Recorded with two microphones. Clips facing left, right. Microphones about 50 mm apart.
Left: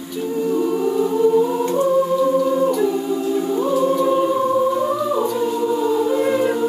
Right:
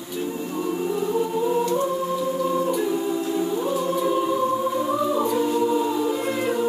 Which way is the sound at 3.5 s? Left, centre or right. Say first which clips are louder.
Left 5 dB; centre.